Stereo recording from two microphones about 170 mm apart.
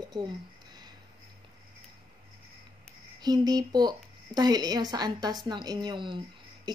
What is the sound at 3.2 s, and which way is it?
Speech, 25° right (ahead or behind).